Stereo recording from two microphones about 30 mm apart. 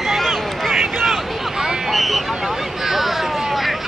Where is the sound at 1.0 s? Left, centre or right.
Centre.